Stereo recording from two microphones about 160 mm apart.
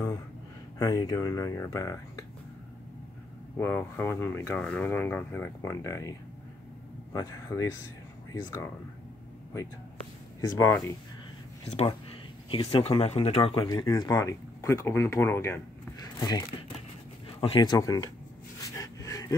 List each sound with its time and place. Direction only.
0.7 s speech: 25° left (ahead or behind)
3.5 s speech: 15° left (ahead or behind)
10.4 s speech: 20° left (ahead or behind)
11.6 s speech: 40° left (ahead or behind); by 18.1 s 20° left (ahead or behind)
18.6 s a sound: 20° left (ahead or behind)